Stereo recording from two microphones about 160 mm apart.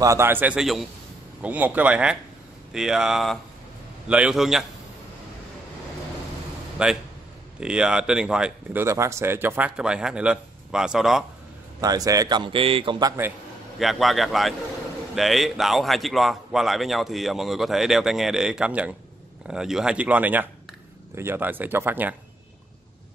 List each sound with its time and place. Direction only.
0.0 s a man's voice: 15° right (ahead or behind)
6.8 s a man's voice: 5° right (ahead or behind)
8.8 s speech: 20° right (ahead or behind); by 11.2 s centre (ahead or behind)
11.8 s speech: 20° right (ahead or behind)
13.0 s speech: 15° right (ahead or behind)
13.7 s a man's voice: centre (ahead or behind)